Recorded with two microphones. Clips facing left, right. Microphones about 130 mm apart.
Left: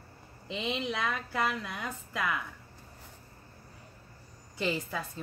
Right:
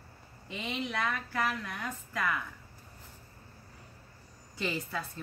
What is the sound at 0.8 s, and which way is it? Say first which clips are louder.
A woman's voice: left 1 dB; 20° left (ahead or behind).